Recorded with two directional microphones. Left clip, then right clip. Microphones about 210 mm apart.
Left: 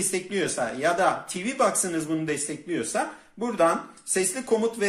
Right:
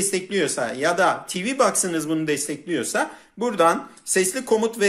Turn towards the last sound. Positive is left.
turn(degrees=-45)  # may be behind; listen again after turning